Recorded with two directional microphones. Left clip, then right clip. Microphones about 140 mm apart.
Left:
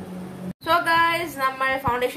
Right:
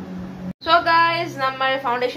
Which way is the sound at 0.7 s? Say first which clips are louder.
Right 3 dB; 25° right (ahead or behind).